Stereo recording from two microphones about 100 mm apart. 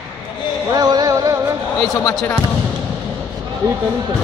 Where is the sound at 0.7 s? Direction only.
40° right (ahead or behind).